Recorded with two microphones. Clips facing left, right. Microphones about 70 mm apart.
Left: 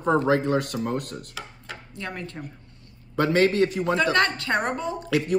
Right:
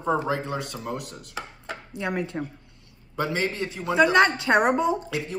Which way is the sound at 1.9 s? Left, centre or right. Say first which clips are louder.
Right 6 dB; centre.